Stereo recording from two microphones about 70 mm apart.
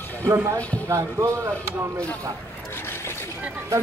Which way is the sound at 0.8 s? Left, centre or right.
Right.